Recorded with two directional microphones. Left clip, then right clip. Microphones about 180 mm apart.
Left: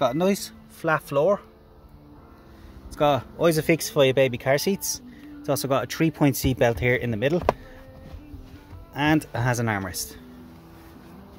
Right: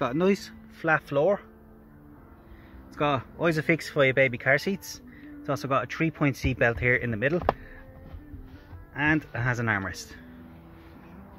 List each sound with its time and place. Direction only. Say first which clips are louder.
0.0 s speech: left 3 dB; 10° left (ahead or behind)
2.9 s speech: left 5 dB; 20° left (ahead or behind)
8.9 s speech: left 3 dB; 25° left (ahead or behind)